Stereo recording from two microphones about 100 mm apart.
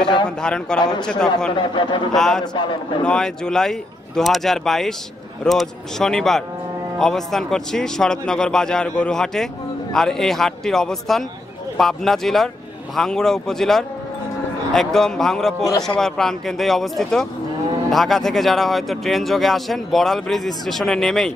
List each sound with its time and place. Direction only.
0.0 s a man's voice: 50° left (ahead or behind)
0.4 s a man's voice: 10° left (ahead or behind)
0.7 s a man's voice: 45° left (ahead or behind)
1.0 s a man's voice: 5° left (ahead or behind)
1.5 s a man's voice: 55° left (ahead or behind)
2.1 s speech: 5° left (ahead or behind)